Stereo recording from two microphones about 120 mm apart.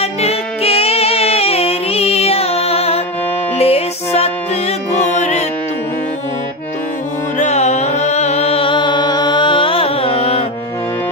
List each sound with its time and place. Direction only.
0.0 s music: 60° left (ahead or behind)
7.3 s music: 75° left (ahead or behind); by 10.4 s 50° left (ahead or behind)